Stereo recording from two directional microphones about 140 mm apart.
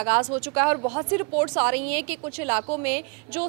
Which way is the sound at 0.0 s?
25° right (ahead or behind).